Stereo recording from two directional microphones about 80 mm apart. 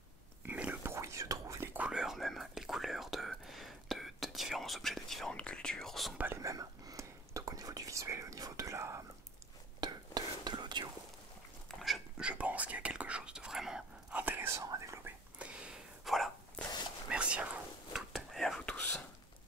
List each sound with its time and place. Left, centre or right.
0.5 s whispering: right
0.9 s whispering: right
1.9 s whispering: centre
6.3 s whispering: right
9.8 s whispering: right
12.2 s whispering: centre
14.1 s whispering: right
14.5 s whispering: right
15.3 s a sound: centre
17.1 s whispering: centre
18.1 s whispering: centre
18.7 s whispering: left